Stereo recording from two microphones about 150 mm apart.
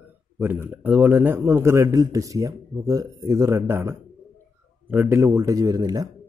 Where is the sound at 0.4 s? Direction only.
10° right (ahead or behind).